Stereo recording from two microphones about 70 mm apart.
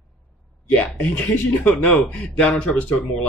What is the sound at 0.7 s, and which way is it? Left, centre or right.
Speech, centre.